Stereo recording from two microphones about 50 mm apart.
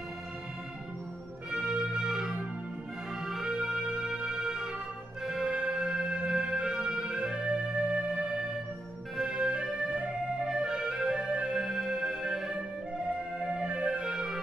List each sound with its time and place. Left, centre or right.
1.5 s music: centre
5.2 s organ: centre
5.5 s music: centre
13.0 s music: right